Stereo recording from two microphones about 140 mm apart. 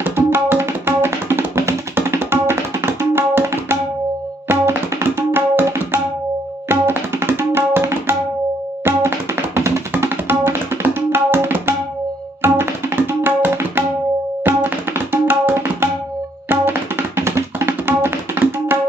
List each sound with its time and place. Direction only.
0.0 s music: 15° right (ahead or behind)
4.5 s tabla: 20° right (ahead or behind)
8.8 s music: 15° right (ahead or behind)
12.4 s tabla: 15° right (ahead or behind)
16.4 s music: 15° right (ahead or behind)